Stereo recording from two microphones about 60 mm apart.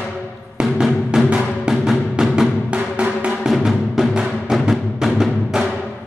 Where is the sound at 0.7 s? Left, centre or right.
Centre.